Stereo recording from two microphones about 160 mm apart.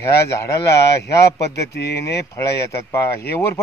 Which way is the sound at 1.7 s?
90° left.